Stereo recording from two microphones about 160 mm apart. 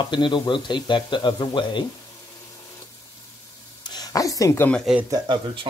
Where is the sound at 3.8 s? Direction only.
25° left (ahead or behind).